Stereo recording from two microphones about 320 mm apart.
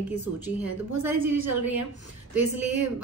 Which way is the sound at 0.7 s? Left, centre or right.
Right.